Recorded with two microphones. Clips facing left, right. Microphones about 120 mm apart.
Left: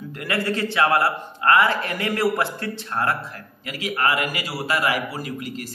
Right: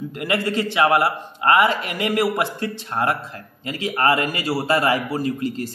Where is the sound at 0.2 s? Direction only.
20° right (ahead or behind).